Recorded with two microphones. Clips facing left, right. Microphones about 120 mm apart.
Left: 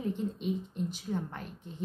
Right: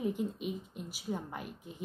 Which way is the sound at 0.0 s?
10° right (ahead or behind).